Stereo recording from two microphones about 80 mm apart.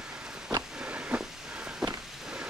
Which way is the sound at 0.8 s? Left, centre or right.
Centre.